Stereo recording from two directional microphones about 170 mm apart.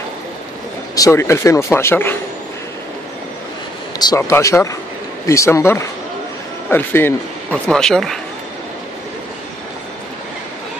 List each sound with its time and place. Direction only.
0.9 s speech: 20° left (ahead or behind)
4.2 s speech: 15° left (ahead or behind)